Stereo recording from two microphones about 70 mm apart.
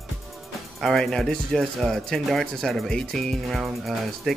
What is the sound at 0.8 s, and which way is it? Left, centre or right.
Speech, centre.